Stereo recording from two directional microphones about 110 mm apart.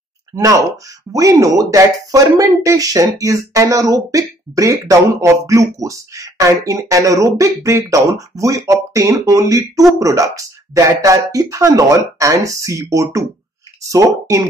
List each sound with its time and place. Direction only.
0.3 s speech: 30° right (ahead or behind)